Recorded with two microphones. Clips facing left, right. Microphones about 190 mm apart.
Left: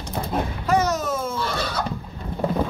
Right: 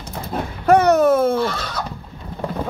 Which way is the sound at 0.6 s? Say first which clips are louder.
Right 10 dB; 60° right (ahead or behind).